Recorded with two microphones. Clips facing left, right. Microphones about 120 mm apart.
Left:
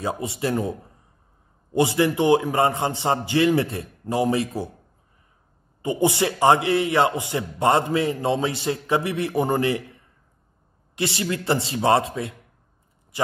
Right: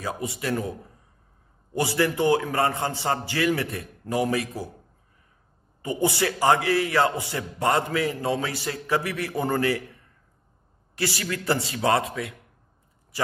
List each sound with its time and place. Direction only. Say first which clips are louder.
0.0 s a man's voice: left 4 dB; 25° left (ahead or behind)
5.8 s a man's voice: left 3 dB; 20° left (ahead or behind)
11.0 s a man's voice: left 3 dB; 25° left (ahead or behind)